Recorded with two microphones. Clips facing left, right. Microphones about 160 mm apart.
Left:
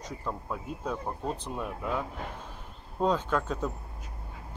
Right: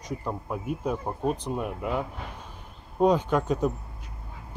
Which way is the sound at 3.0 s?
15° right (ahead or behind).